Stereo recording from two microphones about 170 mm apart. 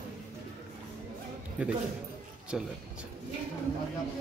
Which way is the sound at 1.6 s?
10° right (ahead or behind).